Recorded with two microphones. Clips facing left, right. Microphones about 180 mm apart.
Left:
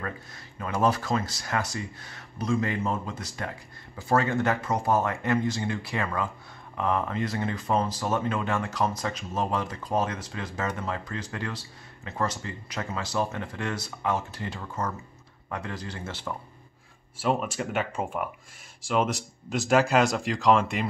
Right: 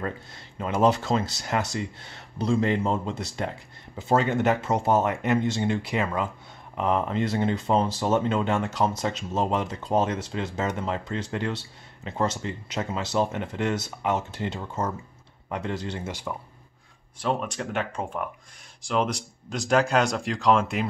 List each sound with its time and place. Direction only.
0.0 s speech: 25° right (ahead or behind)
16.1 s speech: 15° right (ahead or behind)
17.2 s speech: 5° left (ahead or behind)